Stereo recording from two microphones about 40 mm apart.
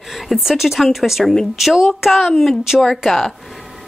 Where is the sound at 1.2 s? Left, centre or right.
Centre.